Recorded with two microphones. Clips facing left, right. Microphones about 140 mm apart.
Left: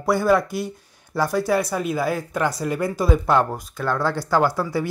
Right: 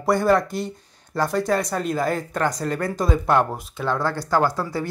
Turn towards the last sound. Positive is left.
turn(degrees=10)  # may be behind; listen again after turning